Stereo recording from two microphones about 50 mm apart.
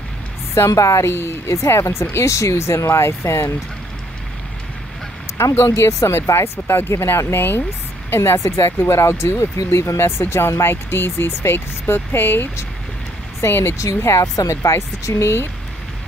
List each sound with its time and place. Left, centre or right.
0.6 s a woman's voice: left
1.0 s speech: left
2.1 s speech: left
5.4 s speech: left
8.4 s speech: left
13.7 s speech: left